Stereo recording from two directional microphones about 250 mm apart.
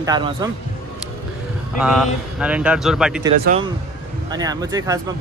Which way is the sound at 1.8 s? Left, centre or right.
Centre.